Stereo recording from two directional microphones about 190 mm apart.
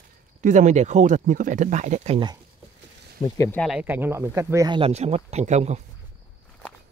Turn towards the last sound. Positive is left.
turn(degrees=-35)  # may be behind; listen again after turning